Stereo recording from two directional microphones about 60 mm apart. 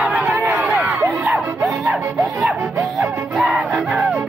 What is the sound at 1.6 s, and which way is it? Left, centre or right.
Music, centre.